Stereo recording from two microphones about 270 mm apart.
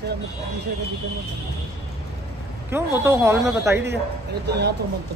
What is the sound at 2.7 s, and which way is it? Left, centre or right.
Speech, centre.